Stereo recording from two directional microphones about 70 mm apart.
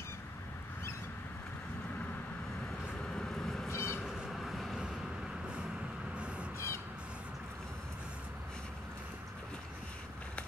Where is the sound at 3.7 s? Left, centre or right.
Left.